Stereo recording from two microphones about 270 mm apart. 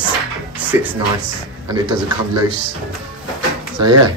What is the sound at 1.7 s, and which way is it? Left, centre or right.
Speech, centre.